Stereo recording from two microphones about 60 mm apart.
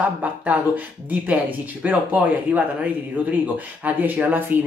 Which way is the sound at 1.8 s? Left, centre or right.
Right.